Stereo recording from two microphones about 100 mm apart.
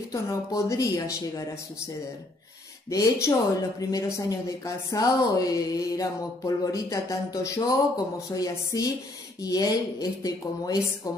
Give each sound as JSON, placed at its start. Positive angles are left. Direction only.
{"t": 0.1, "sound": "speech", "side_deg": 30}
{"t": 2.9, "sound": "speech", "side_deg": 30}